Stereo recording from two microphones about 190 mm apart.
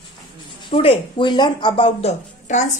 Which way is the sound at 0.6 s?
25° left (ahead or behind).